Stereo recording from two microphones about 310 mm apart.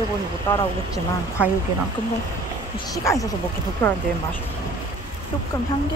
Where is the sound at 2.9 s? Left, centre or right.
Centre.